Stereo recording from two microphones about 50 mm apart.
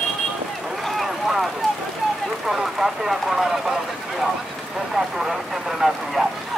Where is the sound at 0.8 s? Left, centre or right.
Centre.